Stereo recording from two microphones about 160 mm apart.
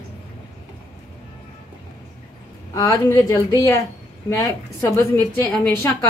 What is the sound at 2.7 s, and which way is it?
A woman's voice, 20° left (ahead or behind).